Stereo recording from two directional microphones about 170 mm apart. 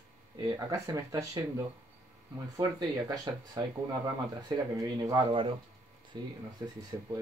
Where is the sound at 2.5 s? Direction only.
25° right (ahead or behind).